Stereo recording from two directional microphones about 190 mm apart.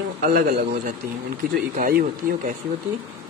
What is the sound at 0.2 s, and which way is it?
Speech, 50° right (ahead or behind).